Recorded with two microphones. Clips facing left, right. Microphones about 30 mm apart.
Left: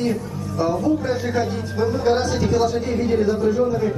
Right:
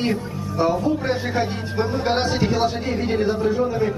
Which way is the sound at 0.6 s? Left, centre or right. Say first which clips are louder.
Even; right.